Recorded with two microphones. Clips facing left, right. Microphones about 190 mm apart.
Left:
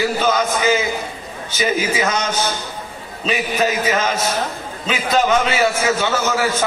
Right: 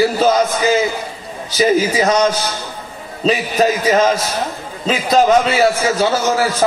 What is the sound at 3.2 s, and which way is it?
A man's voice, 35° right (ahead or behind).